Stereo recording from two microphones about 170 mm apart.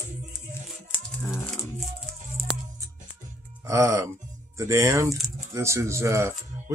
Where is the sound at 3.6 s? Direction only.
20° right (ahead or behind).